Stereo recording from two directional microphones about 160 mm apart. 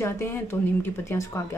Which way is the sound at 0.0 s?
15° left (ahead or behind).